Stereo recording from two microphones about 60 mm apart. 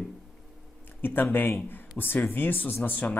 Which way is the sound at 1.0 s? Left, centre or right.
Left.